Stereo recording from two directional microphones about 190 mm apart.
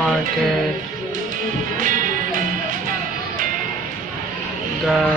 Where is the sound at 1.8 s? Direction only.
45° right (ahead or behind).